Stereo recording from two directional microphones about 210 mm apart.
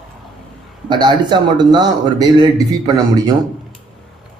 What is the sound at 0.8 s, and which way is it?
A man's voice, 20° right (ahead or behind).